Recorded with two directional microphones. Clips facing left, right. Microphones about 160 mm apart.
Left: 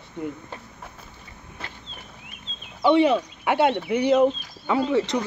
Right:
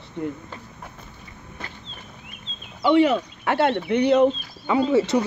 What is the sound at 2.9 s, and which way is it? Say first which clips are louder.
Speech: right 1 dB; 25° left (ahead or behind).